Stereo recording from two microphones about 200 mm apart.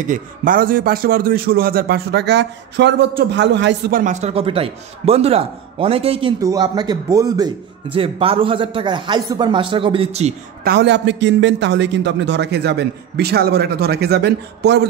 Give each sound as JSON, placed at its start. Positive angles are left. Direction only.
{"t": 0.0, "sound": "speech", "side_deg": -40}
{"t": 3.9, "sound": "a man's voice", "side_deg": -40}
{"t": 10.6, "sound": "a man's voice", "side_deg": -55}